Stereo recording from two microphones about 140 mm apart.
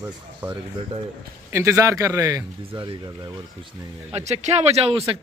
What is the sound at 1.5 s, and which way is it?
Speech, 20° right (ahead or behind).